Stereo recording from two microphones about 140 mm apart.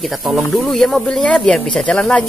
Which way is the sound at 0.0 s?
Centre (ahead or behind).